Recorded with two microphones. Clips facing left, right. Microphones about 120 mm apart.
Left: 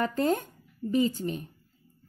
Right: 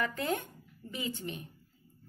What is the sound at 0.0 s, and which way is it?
Speech, 40° left (ahead or behind).